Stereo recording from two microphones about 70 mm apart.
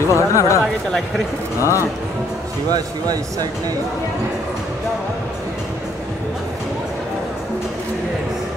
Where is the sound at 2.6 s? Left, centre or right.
Right.